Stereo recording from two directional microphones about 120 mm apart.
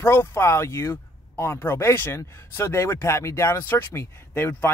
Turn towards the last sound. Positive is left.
turn(degrees=20)  # may be behind; listen again after turning